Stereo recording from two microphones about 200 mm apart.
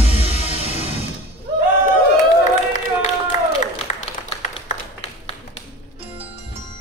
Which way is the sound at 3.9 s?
40° left (ahead or behind).